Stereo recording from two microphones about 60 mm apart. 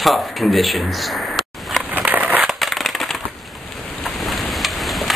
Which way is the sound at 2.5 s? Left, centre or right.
Centre.